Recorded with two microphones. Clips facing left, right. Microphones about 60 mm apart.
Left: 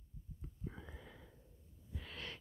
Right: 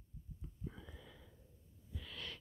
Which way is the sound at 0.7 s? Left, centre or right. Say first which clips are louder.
Left 1 dB; left.